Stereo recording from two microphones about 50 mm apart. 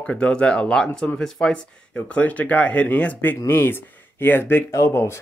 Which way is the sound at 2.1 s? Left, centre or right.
Left.